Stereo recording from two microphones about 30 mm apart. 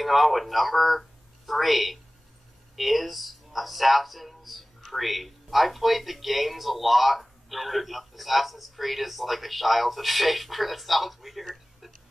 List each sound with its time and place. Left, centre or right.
0.0 s a man's voice: centre